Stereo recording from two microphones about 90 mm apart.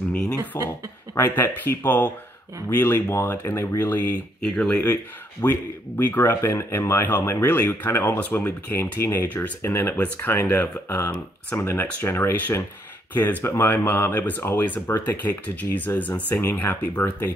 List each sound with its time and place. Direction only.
0.5 s speech: 30° left (ahead or behind); by 4.9 s 15° left (ahead or behind)
5.4 s speech: 25° left (ahead or behind)